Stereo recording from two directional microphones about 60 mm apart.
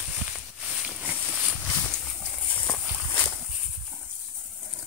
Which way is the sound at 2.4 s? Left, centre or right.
Left.